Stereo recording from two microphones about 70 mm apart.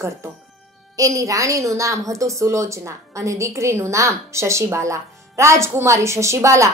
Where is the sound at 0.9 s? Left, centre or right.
Right.